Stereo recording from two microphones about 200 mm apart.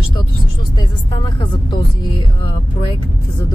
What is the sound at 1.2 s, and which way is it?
Speech, 20° left (ahead or behind).